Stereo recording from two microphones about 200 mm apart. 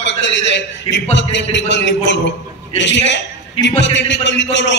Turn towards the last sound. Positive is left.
turn(degrees=65)  # may be behind; listen again after turning